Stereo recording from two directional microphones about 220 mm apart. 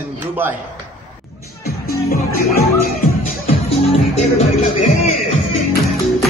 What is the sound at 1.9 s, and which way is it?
Music, 45° left (ahead or behind).